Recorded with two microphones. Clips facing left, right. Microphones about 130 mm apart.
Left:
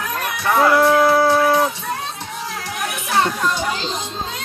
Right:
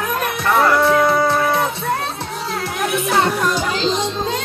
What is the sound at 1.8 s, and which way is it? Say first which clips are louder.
Music: right 5 dB; 60° right (ahead or behind).